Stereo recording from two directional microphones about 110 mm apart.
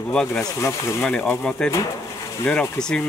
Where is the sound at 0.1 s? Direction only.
10° left (ahead or behind).